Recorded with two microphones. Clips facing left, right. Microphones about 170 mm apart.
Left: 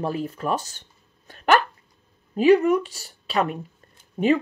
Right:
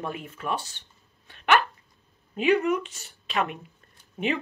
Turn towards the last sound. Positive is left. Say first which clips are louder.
# left 8 dB
turn(degrees=40)  # may be behind; listen again after turning